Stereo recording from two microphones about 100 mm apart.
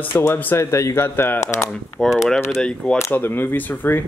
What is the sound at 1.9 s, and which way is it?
Speech, 5° left (ahead or behind).